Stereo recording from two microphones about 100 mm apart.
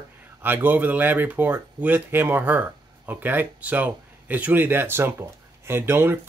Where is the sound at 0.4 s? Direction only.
20° right (ahead or behind).